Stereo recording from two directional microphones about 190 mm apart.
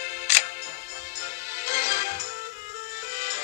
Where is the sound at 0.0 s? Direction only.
35° left (ahead or behind).